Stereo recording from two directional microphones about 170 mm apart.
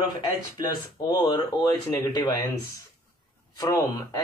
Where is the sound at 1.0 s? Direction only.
25° left (ahead or behind).